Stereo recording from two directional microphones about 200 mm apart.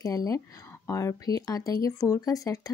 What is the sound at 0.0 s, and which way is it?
Speech, 15° left (ahead or behind).